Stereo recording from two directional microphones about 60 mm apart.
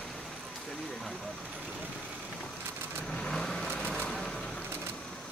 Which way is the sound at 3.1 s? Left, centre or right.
Centre.